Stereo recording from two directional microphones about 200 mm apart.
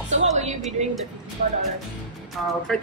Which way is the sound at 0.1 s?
35° right (ahead or behind).